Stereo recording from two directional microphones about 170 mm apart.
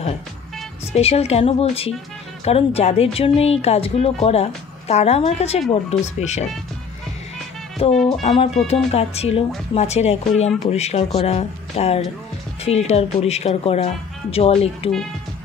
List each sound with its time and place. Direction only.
0.9 s speech: 35° left (ahead or behind)
7.9 s speech: 5° left (ahead or behind)
8.2 s speech: 35° left (ahead or behind)